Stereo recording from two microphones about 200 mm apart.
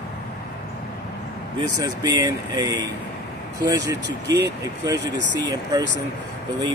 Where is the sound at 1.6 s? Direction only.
20° right (ahead or behind).